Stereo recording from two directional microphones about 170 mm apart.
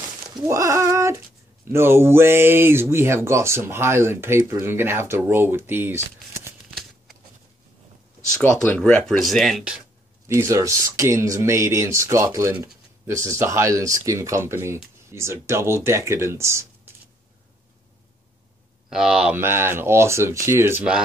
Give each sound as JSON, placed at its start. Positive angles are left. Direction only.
{"t": 0.3, "sound": "a sound", "side_deg": -20}
{"t": 1.7, "sound": "speech", "side_deg": -15}
{"t": 8.4, "sound": "speech", "side_deg": 5}
{"t": 10.2, "sound": "speech", "side_deg": -15}
{"t": 18.9, "sound": "speech", "side_deg": 0}